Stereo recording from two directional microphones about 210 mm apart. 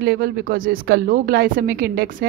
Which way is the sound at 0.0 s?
45° right (ahead or behind).